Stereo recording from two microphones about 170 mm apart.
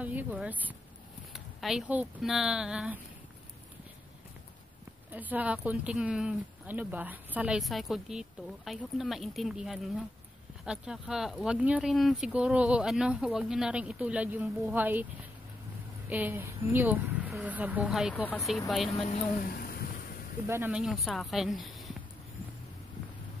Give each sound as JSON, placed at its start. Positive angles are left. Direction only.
{"t": 0.0, "sound": "speech", "side_deg": -10}
{"t": 5.1, "sound": "speech", "side_deg": -10}
{"t": 16.1, "sound": "speech", "side_deg": -10}
{"t": 18.1, "sound": "speech", "side_deg": 10}
{"t": 18.9, "sound": "speech", "side_deg": 45}
{"t": 20.4, "sound": "speech", "side_deg": -15}